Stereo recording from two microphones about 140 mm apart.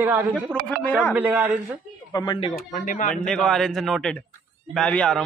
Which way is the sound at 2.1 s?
30° left (ahead or behind).